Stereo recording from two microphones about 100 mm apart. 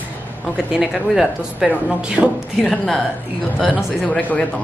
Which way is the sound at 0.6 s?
5° right (ahead or behind).